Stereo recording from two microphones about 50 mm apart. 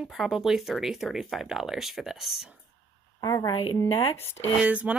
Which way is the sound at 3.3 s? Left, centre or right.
Left.